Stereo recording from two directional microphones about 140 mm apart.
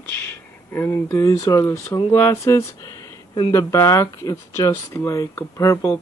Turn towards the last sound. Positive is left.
turn(degrees=20)  # may be behind; listen again after turning